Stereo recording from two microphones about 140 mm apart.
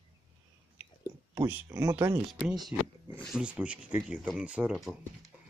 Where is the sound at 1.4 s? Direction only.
15° right (ahead or behind).